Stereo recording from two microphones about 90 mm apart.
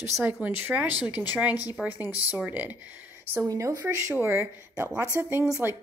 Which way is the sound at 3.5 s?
35° right (ahead or behind).